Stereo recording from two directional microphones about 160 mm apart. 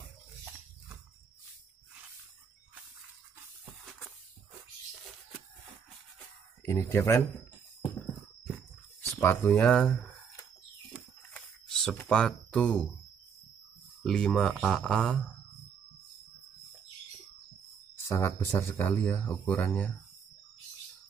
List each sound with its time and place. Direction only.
6.6 s speech: 20° left (ahead or behind)
9.1 s speech: 15° left (ahead or behind)
11.3 s a sound: centre (ahead or behind)
12.0 s speech: 5° left (ahead or behind)
14.0 s speech: 5° left (ahead or behind)
17.9 s speech: 15° left (ahead or behind)